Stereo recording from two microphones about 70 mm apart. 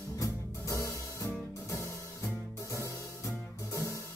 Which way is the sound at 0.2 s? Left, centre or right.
Left.